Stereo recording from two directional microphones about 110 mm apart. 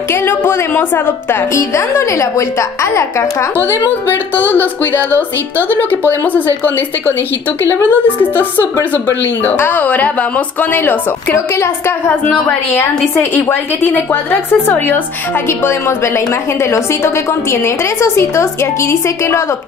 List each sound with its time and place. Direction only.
0.1 s a woman's voice: 20° left (ahead or behind)
12.7 s a woman's voice: 25° left (ahead or behind)
16.7 s a woman's voice: 25° left (ahead or behind)